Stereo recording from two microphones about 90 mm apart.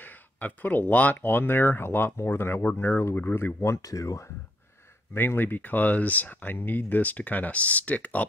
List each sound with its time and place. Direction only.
0.0 s speech: 20° left (ahead or behind); by 4.3 s 35° left (ahead or behind)
5.1 s speech: 25° left (ahead or behind)